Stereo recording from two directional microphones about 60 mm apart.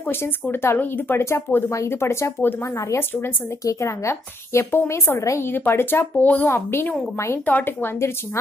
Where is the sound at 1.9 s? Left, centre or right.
Left.